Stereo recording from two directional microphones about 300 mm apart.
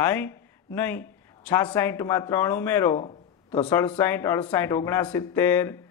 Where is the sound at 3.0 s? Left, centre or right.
Centre.